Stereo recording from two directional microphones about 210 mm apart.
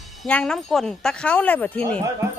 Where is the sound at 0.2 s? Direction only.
5° left (ahead or behind).